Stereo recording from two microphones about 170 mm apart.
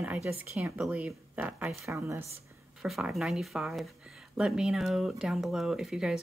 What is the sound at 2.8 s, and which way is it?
Speech, centre (ahead or behind).